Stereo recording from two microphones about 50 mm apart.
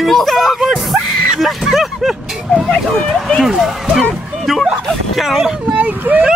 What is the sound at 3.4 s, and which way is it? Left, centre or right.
Speech, centre.